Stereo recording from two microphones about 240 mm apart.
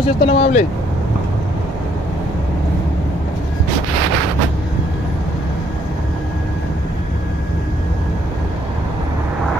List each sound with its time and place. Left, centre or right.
0.2 s speech: left